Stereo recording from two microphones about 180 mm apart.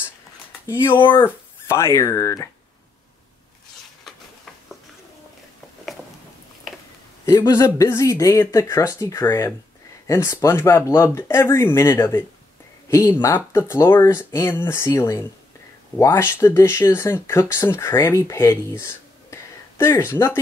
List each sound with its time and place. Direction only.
0.8 s speech: 25° left (ahead or behind)
1.2 s speech: 15° left (ahead or behind)
7.2 s speech: 20° left (ahead or behind)
19.3 s a sound: 15° left (ahead or behind)